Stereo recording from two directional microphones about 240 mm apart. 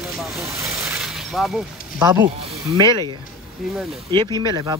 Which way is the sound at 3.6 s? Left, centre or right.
Centre.